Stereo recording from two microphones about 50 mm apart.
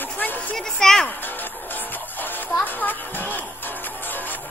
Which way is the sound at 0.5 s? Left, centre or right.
Centre.